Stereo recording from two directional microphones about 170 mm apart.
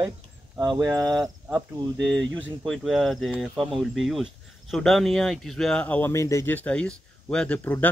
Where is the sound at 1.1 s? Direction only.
Centre (ahead or behind).